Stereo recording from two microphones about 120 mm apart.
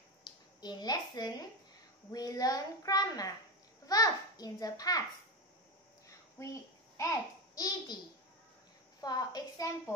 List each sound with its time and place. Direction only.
0.2 s a child's voice: 35° left (ahead or behind)
6.0 s a sound: 25° left (ahead or behind)
9.0 s a child's voice: 35° left (ahead or behind)